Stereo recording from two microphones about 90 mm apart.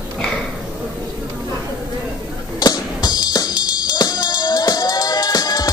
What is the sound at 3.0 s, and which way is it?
Music, 50° left (ahead or behind).